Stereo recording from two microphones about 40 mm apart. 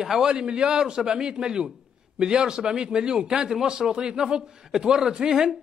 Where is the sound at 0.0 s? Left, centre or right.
Centre.